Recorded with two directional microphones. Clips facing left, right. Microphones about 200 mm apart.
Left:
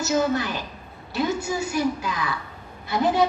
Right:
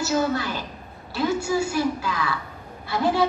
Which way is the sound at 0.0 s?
20° left (ahead or behind).